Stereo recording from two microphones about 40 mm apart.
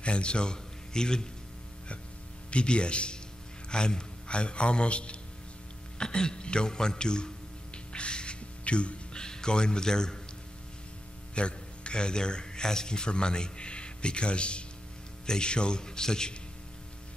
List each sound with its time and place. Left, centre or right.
0.0 s a man's voice: left
2.5 s a man's voice: left
7.9 s music: left
9.2 s a man's voice: centre
11.3 s a man's voice: left